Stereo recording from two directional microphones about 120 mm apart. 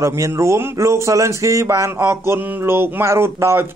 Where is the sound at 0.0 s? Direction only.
25° right (ahead or behind).